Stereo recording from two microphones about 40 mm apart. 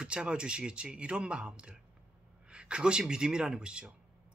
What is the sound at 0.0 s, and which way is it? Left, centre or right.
Speech, right.